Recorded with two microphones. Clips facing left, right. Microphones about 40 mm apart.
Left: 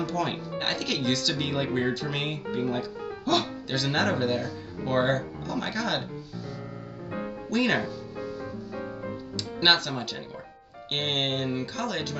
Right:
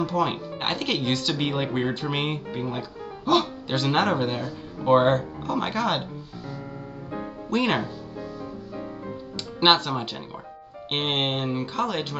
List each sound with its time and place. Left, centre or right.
0.0 s speech: right
2.6 s speech: centre; by 6.0 s right
7.1 s music: centre
7.4 s speech: right
9.6 s speech: right